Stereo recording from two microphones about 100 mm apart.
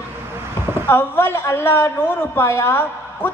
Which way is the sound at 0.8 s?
20° left (ahead or behind).